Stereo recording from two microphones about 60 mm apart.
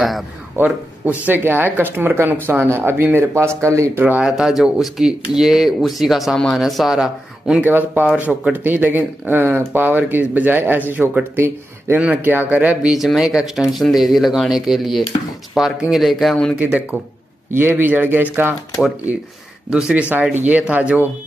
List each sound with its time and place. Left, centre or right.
0.6 s speech: right
4.2 s speech: centre
7.6 s speech: right
11.0 s speech: right
11.3 s speech: right
12.8 s speech: centre
16.5 s speech: right
17.6 s speech: right
19.7 s speech: centre